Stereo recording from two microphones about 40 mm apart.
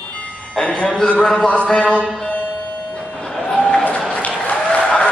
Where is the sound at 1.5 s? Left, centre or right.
Left.